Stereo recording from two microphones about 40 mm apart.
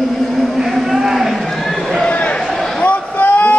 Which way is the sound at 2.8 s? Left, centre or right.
Left.